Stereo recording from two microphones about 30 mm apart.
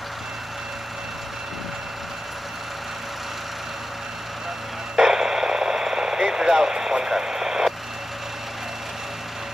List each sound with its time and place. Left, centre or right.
4.9 s radio: centre